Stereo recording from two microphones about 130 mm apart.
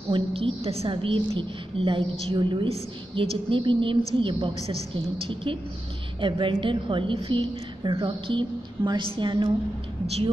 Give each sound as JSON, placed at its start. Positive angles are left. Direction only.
{"t": 0.1, "sound": "a woman's voice", "side_deg": -50}